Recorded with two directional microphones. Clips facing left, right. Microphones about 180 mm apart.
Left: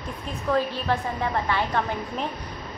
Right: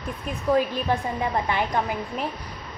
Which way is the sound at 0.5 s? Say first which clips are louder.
Right 2 dB; 15° right (ahead or behind).